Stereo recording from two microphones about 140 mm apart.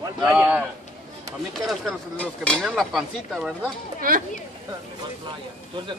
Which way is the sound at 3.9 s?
85° right.